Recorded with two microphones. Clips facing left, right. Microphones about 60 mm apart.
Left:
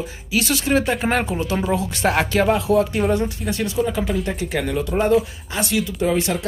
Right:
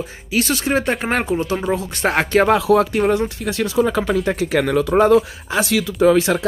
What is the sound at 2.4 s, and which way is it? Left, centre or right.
Speech, right.